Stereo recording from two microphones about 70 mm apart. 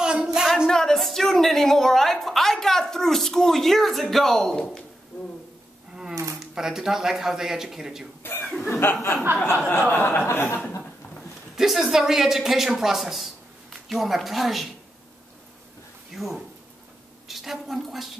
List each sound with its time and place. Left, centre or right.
0.0 s a sound: centre
0.7 s a woman's voice: centre
6.4 s speech: centre
8.2 s cough: left
8.6 s speech: left
9.3 s speech: right
9.7 s speech: left
11.5 s speech: centre
16.2 s speech: centre